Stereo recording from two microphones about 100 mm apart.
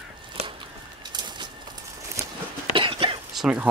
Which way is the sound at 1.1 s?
50° right (ahead or behind).